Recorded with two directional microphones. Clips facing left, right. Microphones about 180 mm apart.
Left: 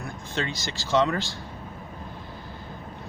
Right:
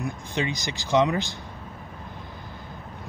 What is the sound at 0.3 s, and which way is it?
Speech, 15° right (ahead or behind).